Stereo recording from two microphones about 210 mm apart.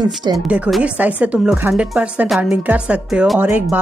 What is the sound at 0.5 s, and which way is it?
Speech, 5° right (ahead or behind).